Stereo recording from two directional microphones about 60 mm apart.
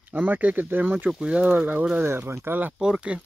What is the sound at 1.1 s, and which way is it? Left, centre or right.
Speech, centre.